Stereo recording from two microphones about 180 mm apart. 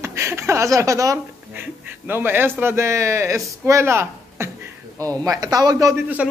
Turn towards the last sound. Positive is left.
turn(degrees=-10)  # may be behind; listen again after turning